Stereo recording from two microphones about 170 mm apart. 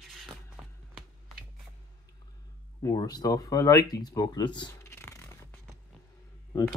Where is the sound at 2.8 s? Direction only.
20° left (ahead or behind).